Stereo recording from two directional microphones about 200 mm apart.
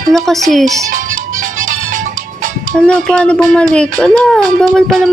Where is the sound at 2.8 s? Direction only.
5° left (ahead or behind).